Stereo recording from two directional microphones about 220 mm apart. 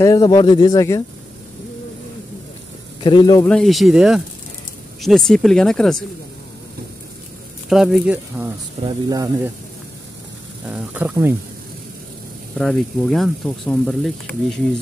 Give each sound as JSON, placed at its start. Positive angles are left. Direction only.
{"t": 0.0, "sound": "speech", "side_deg": 15}
{"t": 3.0, "sound": "speech", "side_deg": 20}
{"t": 3.4, "sound": "speech", "side_deg": 0}
{"t": 7.7, "sound": "speech", "side_deg": 0}
{"t": 8.8, "sound": "speech", "side_deg": -15}
{"t": 10.7, "sound": "speech", "side_deg": -5}
{"t": 12.5, "sound": "speech", "side_deg": 0}